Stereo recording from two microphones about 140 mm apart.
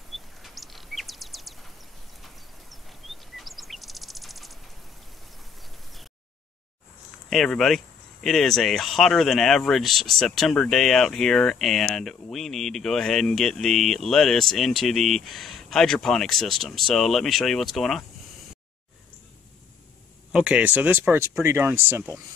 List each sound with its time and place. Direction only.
0.1 s bird vocalization: centre (ahead or behind)
7.2 s speech: centre (ahead or behind)
20.3 s speech: 10° right (ahead or behind)